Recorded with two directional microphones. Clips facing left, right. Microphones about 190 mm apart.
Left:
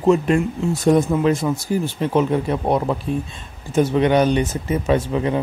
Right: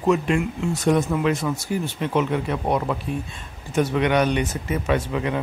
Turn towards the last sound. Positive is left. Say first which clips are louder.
# left 4 dB
turn(degrees=30)  # may be behind; listen again after turning